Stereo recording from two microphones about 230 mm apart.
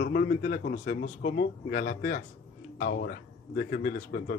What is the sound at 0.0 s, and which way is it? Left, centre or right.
A man's voice, left.